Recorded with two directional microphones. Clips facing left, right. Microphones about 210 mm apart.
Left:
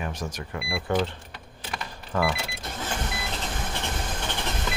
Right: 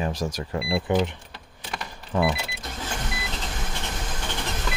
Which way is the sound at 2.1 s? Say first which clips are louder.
Right 2 dB; 20° right (ahead or behind).